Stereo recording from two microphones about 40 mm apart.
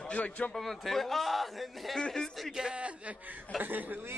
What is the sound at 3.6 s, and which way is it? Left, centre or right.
Speech, right.